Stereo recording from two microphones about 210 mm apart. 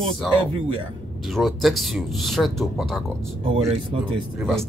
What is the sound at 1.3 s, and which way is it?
Speech, centre (ahead or behind).